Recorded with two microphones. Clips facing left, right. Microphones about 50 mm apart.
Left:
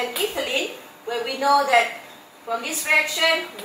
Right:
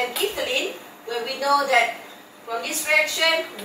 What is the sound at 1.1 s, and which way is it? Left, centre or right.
Speech, centre.